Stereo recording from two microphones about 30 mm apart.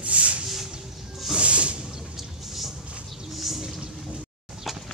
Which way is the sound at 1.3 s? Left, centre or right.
Right.